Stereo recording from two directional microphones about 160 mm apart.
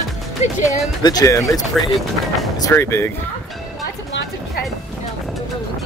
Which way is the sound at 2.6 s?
15° left (ahead or behind).